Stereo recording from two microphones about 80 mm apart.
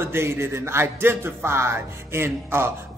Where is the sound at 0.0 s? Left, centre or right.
Right.